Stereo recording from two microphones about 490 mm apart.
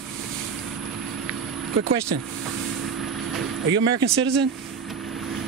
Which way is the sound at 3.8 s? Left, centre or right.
Right.